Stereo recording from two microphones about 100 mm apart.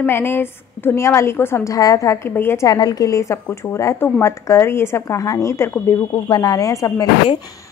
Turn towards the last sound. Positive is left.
turn(degrees=35)  # may be behind; listen again after turning